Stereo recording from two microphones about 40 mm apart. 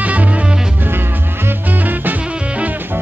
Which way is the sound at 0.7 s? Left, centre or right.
Right.